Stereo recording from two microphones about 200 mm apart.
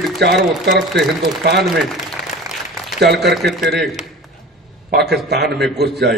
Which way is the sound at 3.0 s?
55° right (ahead or behind).